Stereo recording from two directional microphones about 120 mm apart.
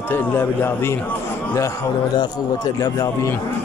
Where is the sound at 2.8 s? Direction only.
25° left (ahead or behind).